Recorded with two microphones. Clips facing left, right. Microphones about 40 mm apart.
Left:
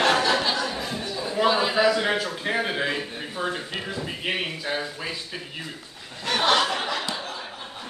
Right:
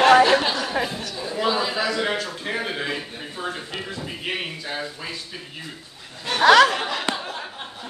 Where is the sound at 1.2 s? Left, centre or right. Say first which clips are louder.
Left 1 dB; centre.